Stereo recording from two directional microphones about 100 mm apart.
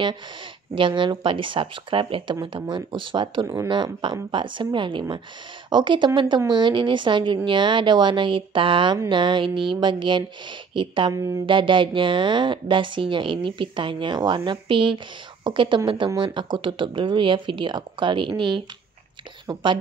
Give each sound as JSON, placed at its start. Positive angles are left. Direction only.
{"t": 0.7, "sound": "a woman's voice", "side_deg": -55}
{"t": 11.1, "sound": "speech", "side_deg": -30}
{"t": 11.4, "sound": "speech", "side_deg": -55}